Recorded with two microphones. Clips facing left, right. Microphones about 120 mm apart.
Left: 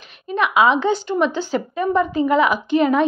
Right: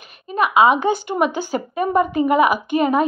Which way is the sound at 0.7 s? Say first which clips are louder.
Right 1 dB; 10° right (ahead or behind).